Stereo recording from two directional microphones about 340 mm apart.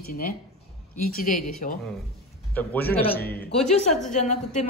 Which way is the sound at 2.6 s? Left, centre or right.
Centre.